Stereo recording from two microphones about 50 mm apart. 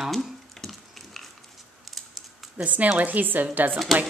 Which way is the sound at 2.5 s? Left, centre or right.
Right.